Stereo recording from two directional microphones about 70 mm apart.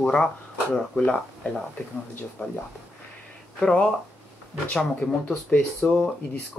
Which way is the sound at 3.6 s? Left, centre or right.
Centre.